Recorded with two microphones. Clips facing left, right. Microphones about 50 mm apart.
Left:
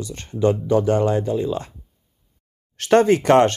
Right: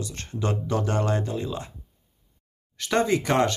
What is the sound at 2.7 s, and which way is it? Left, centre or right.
Speech, left.